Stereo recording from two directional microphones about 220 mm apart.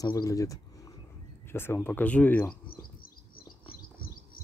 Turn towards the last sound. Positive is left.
turn(degrees=40)  # may be behind; listen again after turning